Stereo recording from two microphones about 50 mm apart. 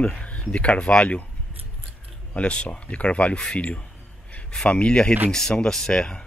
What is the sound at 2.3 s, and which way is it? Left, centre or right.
A man's voice, left.